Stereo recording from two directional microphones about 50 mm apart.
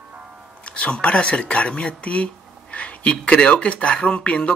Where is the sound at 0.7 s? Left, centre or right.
Left.